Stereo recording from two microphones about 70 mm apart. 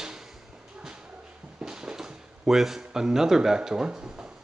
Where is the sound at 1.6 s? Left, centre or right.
Centre.